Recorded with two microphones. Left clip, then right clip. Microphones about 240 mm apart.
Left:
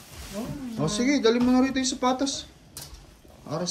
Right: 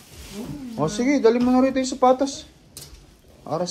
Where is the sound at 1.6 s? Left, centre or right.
Centre.